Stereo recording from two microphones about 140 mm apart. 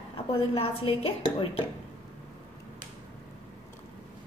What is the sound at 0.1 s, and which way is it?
A woman's voice, 40° left (ahead or behind).